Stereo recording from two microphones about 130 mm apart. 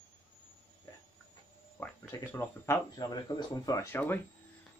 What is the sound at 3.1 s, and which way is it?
Speech, 30° left (ahead or behind).